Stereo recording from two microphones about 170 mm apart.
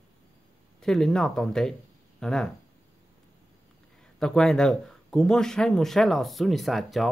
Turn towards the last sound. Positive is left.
turn(degrees=0)  # may be behind; listen again after turning